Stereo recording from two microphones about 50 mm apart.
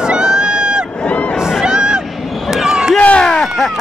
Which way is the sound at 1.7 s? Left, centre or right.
Centre.